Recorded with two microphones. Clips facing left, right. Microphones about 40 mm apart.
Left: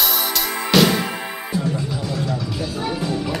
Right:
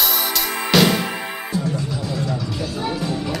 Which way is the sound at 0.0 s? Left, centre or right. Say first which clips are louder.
Even; centre.